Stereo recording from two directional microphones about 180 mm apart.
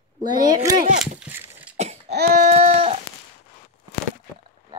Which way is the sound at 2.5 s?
35° right (ahead or behind).